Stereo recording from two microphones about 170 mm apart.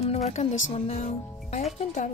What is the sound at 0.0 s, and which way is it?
Speech, 40° left (ahead or behind).